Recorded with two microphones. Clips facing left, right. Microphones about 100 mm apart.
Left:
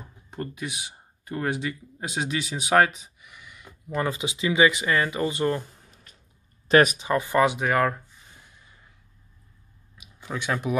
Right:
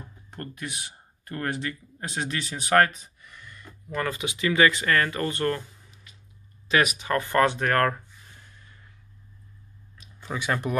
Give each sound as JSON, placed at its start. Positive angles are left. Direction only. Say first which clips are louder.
{"t": 0.3, "sound": "speech", "louder": "left 3 dB", "side_deg": 10}
{"t": 6.7, "sound": "speech", "louder": "left 5 dB", "side_deg": 40}
{"t": 7.0, "sound": "speech", "louder": "left 1 dB", "side_deg": 15}
{"t": 9.9, "sound": "a sound", "louder": "even", "side_deg": 0}